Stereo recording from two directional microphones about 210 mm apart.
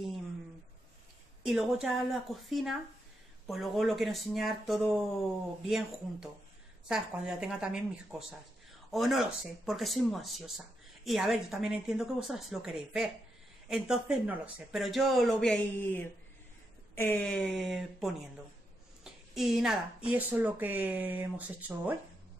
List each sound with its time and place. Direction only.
1.4 s a woman's voice: 5° right (ahead or behind)